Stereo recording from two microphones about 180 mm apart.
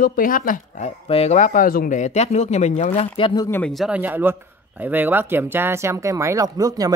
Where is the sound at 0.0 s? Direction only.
50° left (ahead or behind); by 3.4 s 30° left (ahead or behind).